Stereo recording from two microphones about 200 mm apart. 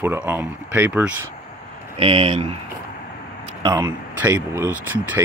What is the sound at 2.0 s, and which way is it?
Speech, 25° right (ahead or behind).